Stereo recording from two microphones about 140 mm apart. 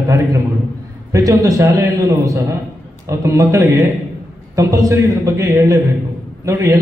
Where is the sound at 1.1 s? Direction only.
25° right (ahead or behind).